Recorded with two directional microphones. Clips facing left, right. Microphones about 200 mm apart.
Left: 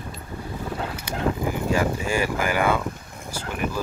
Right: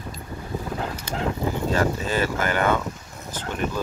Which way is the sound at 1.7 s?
10° left (ahead or behind).